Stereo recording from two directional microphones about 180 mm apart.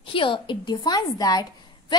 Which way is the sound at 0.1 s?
30° left (ahead or behind).